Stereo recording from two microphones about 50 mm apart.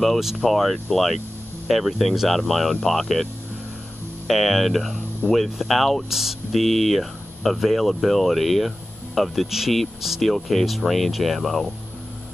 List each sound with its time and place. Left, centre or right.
0.0 s speech: centre
4.3 s speech: centre